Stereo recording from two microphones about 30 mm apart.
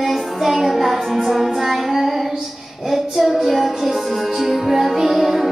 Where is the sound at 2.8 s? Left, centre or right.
Centre.